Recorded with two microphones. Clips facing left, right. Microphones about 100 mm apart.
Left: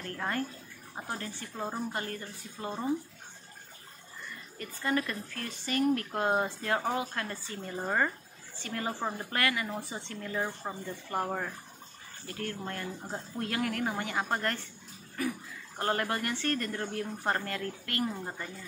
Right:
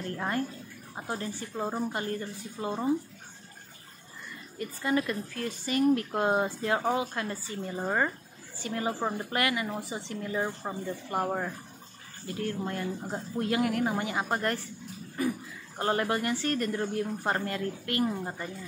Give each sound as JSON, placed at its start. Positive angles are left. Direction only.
{"t": 0.2, "sound": "a woman's voice", "side_deg": -20}
{"t": 4.6, "sound": "speech", "side_deg": -20}
{"t": 8.6, "sound": "a woman's voice", "side_deg": -20}
{"t": 12.3, "sound": "speech", "side_deg": -20}
{"t": 15.8, "sound": "a woman's voice", "side_deg": -20}